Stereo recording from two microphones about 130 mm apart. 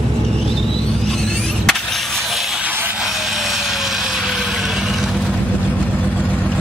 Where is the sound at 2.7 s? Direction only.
15° right (ahead or behind).